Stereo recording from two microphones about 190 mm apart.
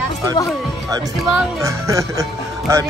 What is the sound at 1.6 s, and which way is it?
Speech, 15° right (ahead or behind).